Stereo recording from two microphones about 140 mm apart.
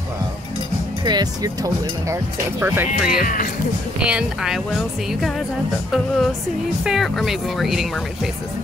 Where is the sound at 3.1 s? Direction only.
85° left.